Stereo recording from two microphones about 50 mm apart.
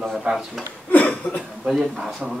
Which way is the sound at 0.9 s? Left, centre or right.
Left.